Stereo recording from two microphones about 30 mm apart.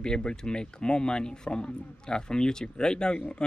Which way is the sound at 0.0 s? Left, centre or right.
Left.